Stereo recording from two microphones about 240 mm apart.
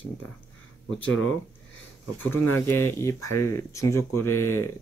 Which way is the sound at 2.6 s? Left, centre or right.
Centre.